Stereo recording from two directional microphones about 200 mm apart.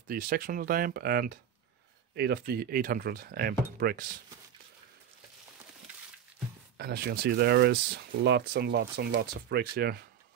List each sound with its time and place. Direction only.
0.1 s speech: 45° right (ahead or behind)
6.8 s speech: 50° right (ahead or behind)